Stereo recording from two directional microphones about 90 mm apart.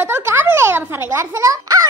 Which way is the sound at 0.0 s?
25° right (ahead or behind).